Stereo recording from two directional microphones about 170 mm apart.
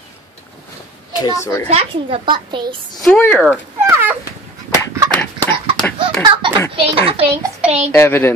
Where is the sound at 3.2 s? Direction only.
10° left (ahead or behind).